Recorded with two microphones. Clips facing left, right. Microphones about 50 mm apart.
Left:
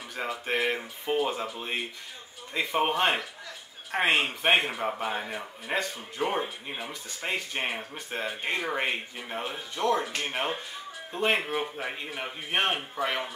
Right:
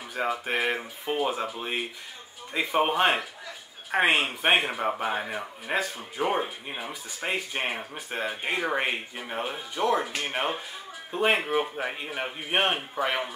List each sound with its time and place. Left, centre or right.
0.2 s speech: centre